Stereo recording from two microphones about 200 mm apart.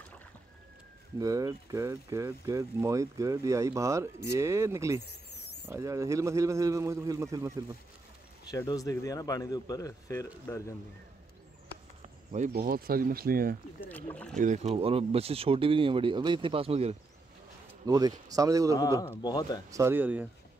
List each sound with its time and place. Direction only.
1.2 s speech: 15° right (ahead or behind)
8.5 s speech: 20° left (ahead or behind)
12.5 s speech: 50° right (ahead or behind)
13.8 s speech: 10° left (ahead or behind)
14.4 s speech: 35° right (ahead or behind)
17.8 s speech: 20° right (ahead or behind)
18.8 s speech: 20° left (ahead or behind)
19.7 s speech: 10° right (ahead or behind)